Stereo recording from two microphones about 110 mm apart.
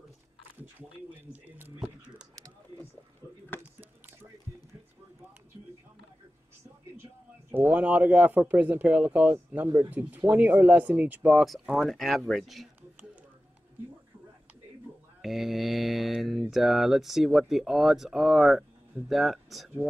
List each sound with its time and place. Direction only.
0.7 s speech: 15° right (ahead or behind)
1.8 s a sound: 10° right (ahead or behind)
3.5 s a sound: 20° left (ahead or behind)
7.5 s speech: 10° right (ahead or behind)
11.7 s mantra: centre (ahead or behind)
15.2 s mantra: centre (ahead or behind)